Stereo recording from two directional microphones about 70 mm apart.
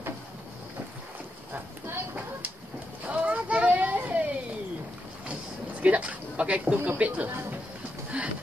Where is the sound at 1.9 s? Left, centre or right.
Right.